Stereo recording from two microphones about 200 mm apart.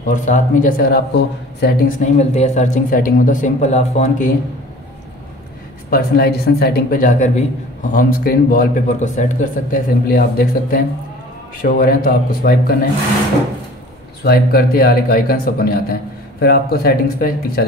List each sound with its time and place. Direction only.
0.0 s a man's voice: 40° left (ahead or behind)
2.1 s speech: 35° left (ahead or behind)
5.9 s a man's voice: 50° left (ahead or behind)
14.2 s a man's voice: 50° left (ahead or behind)